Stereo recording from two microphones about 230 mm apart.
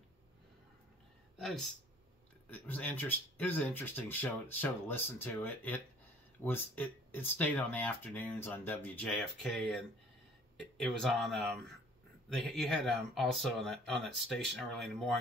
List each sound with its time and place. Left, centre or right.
1.4 s speech: centre